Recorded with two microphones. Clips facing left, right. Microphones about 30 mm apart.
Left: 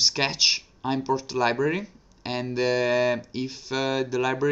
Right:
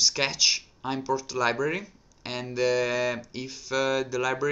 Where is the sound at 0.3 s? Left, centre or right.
Left.